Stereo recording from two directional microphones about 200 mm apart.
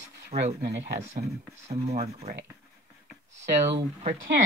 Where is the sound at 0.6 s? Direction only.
55° right (ahead or behind).